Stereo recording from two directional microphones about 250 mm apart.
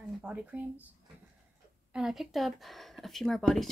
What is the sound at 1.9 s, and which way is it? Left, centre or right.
Speech, centre.